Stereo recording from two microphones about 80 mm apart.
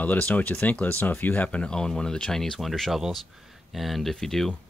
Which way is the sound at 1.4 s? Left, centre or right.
Centre.